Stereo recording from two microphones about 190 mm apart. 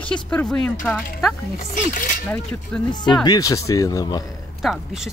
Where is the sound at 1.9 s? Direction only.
45° left (ahead or behind).